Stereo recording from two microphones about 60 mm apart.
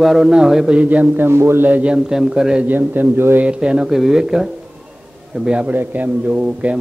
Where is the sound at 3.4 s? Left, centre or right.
Centre.